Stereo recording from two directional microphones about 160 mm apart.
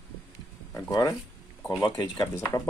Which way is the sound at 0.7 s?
20° left (ahead or behind).